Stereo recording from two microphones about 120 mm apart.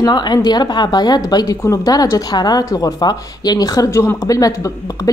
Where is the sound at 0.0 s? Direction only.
35° left (ahead or behind).